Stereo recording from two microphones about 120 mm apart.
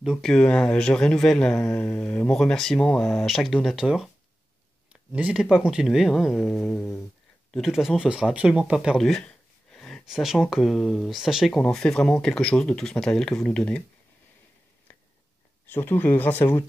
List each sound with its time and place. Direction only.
0.0 s speech: centre (ahead or behind)
0.3 s speech: 10° left (ahead or behind)
5.1 s speech: 10° right (ahead or behind); by 6.9 s 10° left (ahead or behind)
7.5 s speech: centre (ahead or behind)
8.9 s a sound: 5° left (ahead or behind)
10.0 s speech: 5° right (ahead or behind)
15.6 s speech: 15° left (ahead or behind)